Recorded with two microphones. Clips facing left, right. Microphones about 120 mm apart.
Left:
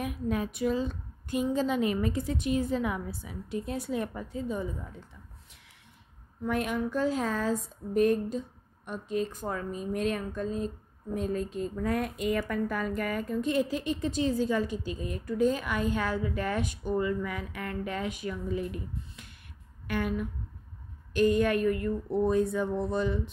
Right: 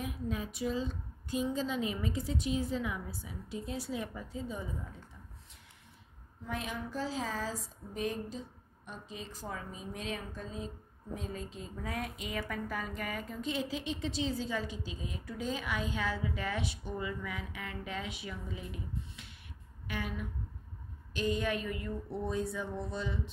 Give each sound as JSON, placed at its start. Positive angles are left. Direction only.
{"t": 0.0, "sound": "a woman's voice", "side_deg": 60}
{"t": 6.4, "sound": "a woman's voice", "side_deg": 60}